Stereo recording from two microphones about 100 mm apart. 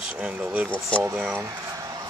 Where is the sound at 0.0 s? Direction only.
15° right (ahead or behind).